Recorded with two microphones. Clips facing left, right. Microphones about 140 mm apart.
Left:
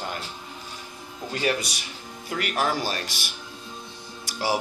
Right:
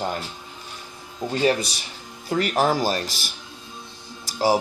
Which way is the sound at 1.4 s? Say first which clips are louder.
Right 5 dB; 30° right (ahead or behind).